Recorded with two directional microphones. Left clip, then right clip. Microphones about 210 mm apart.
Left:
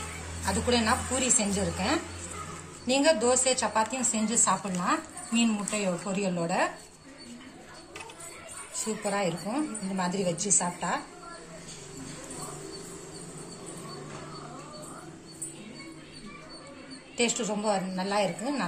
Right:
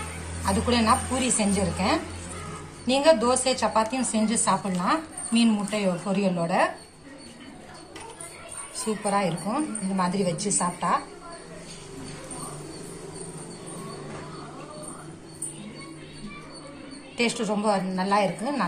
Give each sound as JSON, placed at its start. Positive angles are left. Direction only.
{"t": 0.5, "sound": "a woman's voice", "side_deg": 40}
{"t": 9.0, "sound": "a woman's voice", "side_deg": 35}
{"t": 17.2, "sound": "a woman's voice", "side_deg": 35}